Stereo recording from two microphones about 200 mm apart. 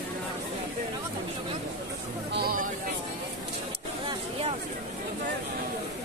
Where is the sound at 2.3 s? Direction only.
50° right (ahead or behind).